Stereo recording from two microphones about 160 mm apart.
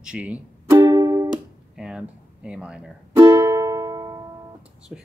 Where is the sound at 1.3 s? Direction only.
5° right (ahead or behind).